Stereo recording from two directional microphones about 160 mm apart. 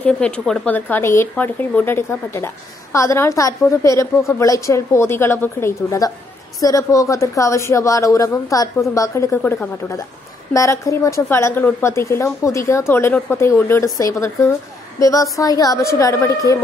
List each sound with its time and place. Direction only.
0.0 s a woman's voice: 10° left (ahead or behind)